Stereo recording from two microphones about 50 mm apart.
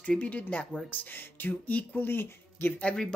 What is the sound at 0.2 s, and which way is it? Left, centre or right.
Speech, left.